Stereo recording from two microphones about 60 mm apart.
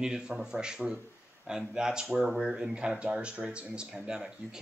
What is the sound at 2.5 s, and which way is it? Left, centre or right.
Speech, centre.